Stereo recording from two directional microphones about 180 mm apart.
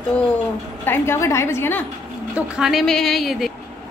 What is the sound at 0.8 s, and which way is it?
A woman's voice, 10° left (ahead or behind).